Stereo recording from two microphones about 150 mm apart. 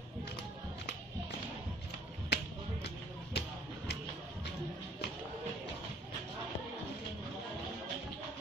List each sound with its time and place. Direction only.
2.2 s finger snapping: 90° left
3.3 s music: 90° left